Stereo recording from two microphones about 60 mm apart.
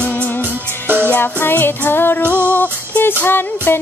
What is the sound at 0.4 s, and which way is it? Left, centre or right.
Music, right.